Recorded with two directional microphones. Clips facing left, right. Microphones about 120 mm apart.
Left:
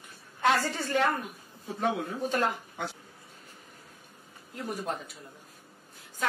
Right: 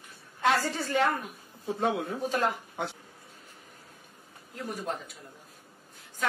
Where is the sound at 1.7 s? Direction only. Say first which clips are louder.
Right 1 dB; 25° right (ahead or behind).